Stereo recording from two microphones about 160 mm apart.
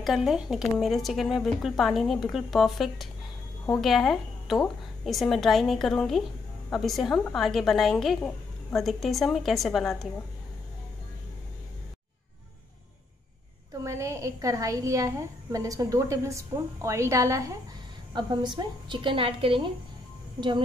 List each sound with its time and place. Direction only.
0.0 s a woman's voice: centre (ahead or behind)
13.8 s a woman's voice: 20° right (ahead or behind)
18.1 s a woman's voice: 30° right (ahead or behind)